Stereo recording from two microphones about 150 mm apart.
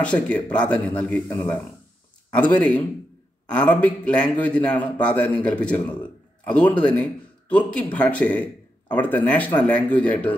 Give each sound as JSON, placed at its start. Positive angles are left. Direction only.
{"t": 0.0, "sound": "a man's voice", "side_deg": 10}